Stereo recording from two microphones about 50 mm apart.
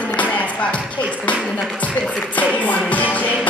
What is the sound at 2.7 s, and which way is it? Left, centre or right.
Music, left.